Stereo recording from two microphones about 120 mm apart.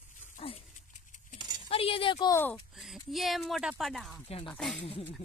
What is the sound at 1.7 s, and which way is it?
Speech, 50° left (ahead or behind).